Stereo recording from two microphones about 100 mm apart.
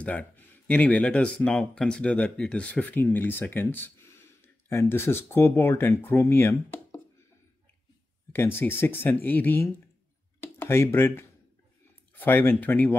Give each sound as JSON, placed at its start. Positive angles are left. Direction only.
{"t": 0.0, "sound": "speech", "side_deg": 15}
{"t": 8.3, "sound": "speech", "side_deg": 20}